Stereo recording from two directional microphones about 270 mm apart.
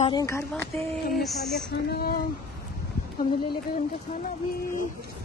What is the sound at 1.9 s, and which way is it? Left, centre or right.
Speech, left.